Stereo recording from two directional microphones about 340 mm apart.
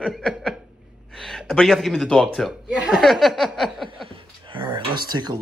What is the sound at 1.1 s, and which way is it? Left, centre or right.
Speech, centre.